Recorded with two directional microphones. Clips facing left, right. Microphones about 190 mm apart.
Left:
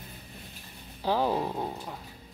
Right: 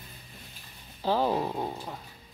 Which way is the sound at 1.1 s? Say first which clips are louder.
Right 1 dB; 10° right (ahead or behind).